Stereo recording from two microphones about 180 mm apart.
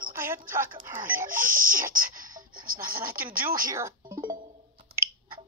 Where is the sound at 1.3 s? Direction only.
50° right (ahead or behind).